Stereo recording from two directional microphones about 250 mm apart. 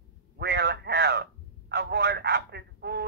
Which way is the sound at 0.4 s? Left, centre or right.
Right.